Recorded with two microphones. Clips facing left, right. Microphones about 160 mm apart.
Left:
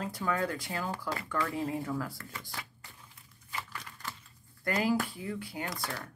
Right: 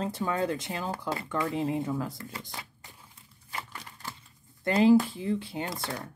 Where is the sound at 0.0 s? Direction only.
25° right (ahead or behind).